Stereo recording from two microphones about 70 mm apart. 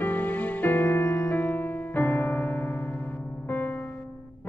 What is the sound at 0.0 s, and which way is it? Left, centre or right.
Music, left.